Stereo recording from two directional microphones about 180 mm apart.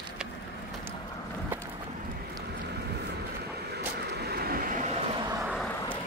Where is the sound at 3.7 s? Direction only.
65° right (ahead or behind); by 5.0 s 45° right (ahead or behind).